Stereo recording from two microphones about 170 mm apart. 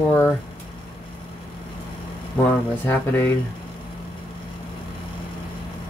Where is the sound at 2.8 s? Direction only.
10° left (ahead or behind).